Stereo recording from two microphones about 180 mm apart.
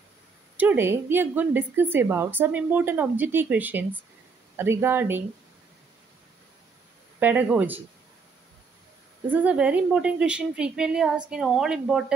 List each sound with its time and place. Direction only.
0.6 s a woman's voice: 10° right (ahead or behind)
7.2 s a woman's voice: 10° right (ahead or behind)
9.3 s a woman's voice: 10° right (ahead or behind)